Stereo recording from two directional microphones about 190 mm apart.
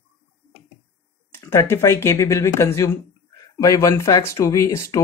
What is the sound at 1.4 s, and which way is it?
Speech, 15° left (ahead or behind).